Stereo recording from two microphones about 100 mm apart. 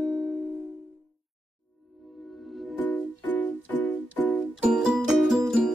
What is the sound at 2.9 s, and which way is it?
Music, 15° left (ahead or behind).